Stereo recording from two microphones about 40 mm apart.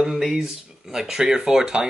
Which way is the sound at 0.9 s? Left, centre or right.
Centre.